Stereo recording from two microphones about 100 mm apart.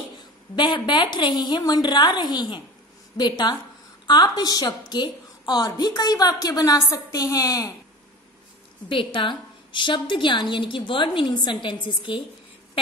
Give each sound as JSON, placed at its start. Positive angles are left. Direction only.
{"t": 0.6, "sound": "a woman's voice", "side_deg": 50}
{"t": 8.8, "sound": "a woman's voice", "side_deg": 55}